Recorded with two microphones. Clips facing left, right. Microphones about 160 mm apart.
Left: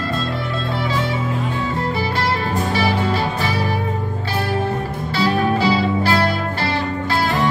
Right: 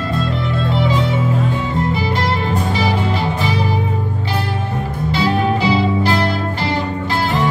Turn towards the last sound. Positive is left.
turn(degrees=-20)  # may be behind; listen again after turning